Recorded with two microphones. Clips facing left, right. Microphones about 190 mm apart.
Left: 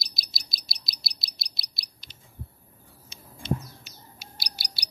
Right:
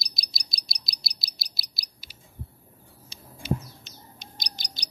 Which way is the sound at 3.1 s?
30° right (ahead or behind).